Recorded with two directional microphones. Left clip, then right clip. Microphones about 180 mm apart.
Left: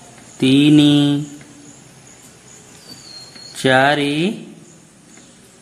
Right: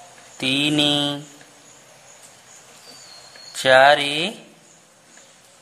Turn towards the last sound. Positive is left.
turn(degrees=-25)  # may be behind; listen again after turning